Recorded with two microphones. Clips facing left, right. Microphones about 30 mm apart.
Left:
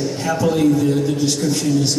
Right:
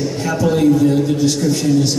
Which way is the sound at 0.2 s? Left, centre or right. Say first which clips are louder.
Right 2 dB; centre.